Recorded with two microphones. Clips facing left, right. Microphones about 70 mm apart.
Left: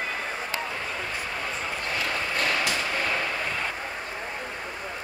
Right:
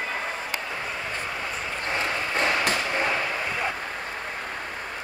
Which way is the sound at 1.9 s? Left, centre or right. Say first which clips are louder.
Right 3 dB; right.